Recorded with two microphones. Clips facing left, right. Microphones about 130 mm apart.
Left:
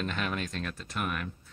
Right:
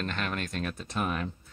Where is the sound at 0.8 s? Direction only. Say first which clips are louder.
Right 3 dB; 25° right (ahead or behind).